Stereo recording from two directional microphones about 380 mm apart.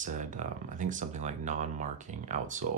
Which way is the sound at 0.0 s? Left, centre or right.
Centre.